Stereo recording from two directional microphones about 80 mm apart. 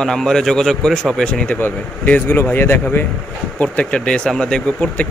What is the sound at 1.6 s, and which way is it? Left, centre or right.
Speech, left.